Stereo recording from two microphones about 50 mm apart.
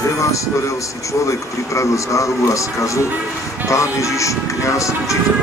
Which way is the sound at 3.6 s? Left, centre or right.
Right.